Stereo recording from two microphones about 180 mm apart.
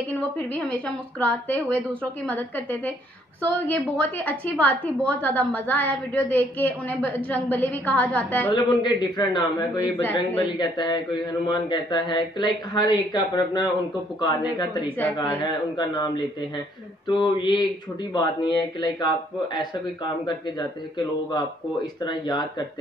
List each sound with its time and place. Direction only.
0.4 s a woman's voice: 10° left (ahead or behind)
8.5 s a man's voice: 25° left (ahead or behind)
17.1 s a man's voice: 25° left (ahead or behind)